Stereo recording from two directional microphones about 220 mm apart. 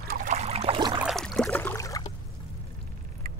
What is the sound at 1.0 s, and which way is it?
Boat, centre (ahead or behind).